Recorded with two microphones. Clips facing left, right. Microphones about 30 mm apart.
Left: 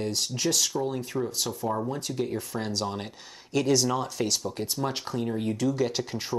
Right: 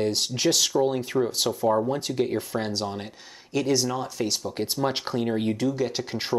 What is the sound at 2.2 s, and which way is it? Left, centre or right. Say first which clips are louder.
Speech: right 4 dB; right.